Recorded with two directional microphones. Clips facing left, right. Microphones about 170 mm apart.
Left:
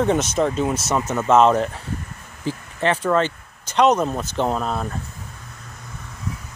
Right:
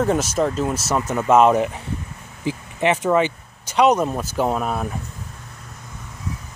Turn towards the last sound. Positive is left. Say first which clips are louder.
# right 1 dB
turn(degrees=-10)  # may be behind; listen again after turning